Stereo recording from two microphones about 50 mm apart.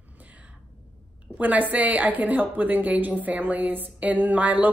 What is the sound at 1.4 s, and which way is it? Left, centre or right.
A woman's voice, right.